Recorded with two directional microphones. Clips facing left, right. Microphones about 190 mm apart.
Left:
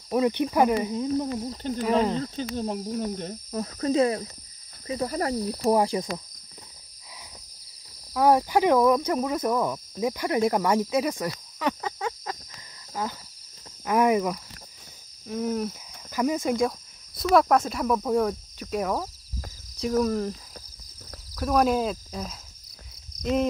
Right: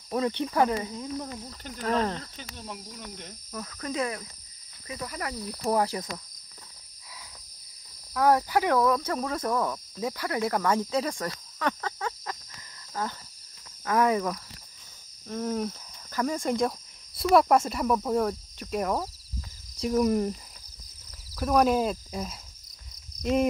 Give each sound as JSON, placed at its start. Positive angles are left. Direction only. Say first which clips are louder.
{"t": 0.1, "sound": "speech", "louder": "left 4 dB", "side_deg": 15}
{"t": 1.4, "sound": "speech", "louder": "left 11 dB", "side_deg": 30}
{"t": 1.8, "sound": "speech", "louder": "left 4 dB", "side_deg": 10}
{"t": 2.1, "sound": "speech", "louder": "left 13 dB", "side_deg": 35}
{"t": 5.5, "sound": "speech", "louder": "left 3 dB", "side_deg": 20}
{"t": 8.1, "sound": "speech", "louder": "left 2 dB", "side_deg": 20}
{"t": 13.0, "sound": "speech", "louder": "left 2 dB", "side_deg": 10}
{"t": 20.0, "sound": "speech", "louder": "right 1 dB", "side_deg": -15}
{"t": 21.4, "sound": "speech", "louder": "even", "side_deg": 0}